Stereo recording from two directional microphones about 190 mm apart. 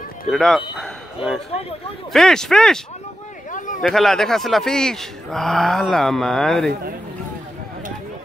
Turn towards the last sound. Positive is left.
turn(degrees=5)  # may be behind; listen again after turning